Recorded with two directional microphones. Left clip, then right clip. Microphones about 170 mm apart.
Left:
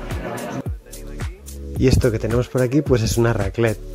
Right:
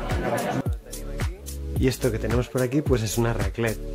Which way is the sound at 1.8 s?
30° left (ahead or behind).